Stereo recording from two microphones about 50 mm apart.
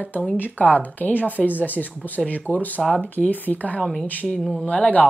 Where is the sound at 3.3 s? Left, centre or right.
Left.